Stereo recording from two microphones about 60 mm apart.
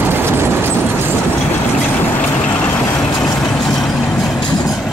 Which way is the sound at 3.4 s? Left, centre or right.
Centre.